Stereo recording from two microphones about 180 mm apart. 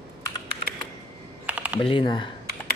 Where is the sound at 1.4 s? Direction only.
5° right (ahead or behind).